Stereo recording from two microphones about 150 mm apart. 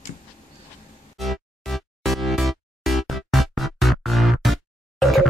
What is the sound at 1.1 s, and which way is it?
Music, centre (ahead or behind).